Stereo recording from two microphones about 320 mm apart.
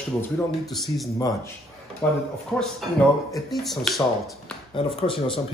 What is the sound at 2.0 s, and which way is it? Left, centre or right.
Speech, centre.